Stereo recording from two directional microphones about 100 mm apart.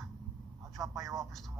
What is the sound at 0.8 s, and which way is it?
Speech, 35° right (ahead or behind).